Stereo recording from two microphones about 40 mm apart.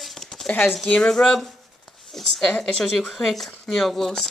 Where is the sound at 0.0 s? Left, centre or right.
Centre.